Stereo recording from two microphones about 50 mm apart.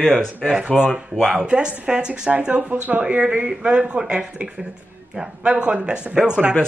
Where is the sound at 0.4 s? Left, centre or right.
Right.